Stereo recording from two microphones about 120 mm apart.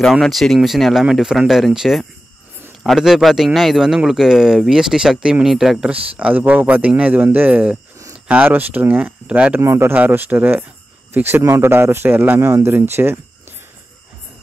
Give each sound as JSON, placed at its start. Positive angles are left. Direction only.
{"t": 0.0, "sound": "a man's voice", "side_deg": 0}